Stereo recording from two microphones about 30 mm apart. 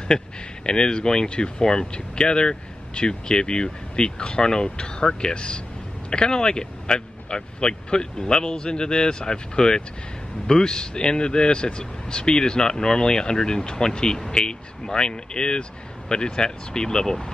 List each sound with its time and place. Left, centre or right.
0.1 s speech: centre